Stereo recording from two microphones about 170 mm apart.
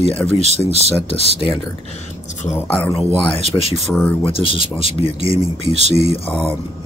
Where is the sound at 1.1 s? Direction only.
35° left (ahead or behind).